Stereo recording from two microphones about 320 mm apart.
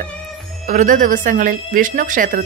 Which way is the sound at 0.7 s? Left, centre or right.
Right.